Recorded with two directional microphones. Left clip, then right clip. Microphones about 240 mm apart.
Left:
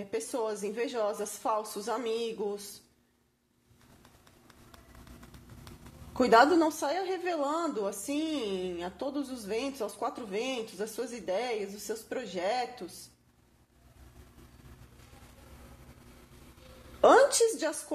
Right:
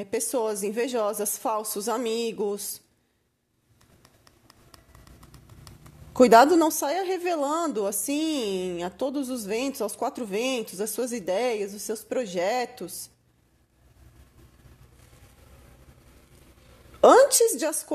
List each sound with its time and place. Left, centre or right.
0.0 s a woman's voice: right
6.1 s a woman's voice: right
17.0 s a woman's voice: right